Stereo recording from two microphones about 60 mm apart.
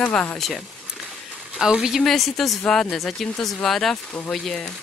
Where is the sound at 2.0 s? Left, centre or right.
Centre.